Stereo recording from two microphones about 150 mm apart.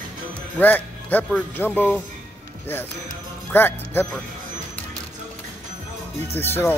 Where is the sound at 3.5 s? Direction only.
15° left (ahead or behind).